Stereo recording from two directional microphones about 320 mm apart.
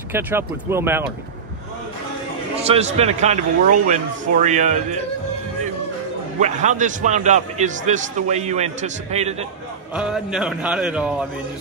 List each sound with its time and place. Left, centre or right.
0.1 s speech: centre
2.5 s a man's voice: centre
6.4 s a man's voice: right
9.9 s speech: centre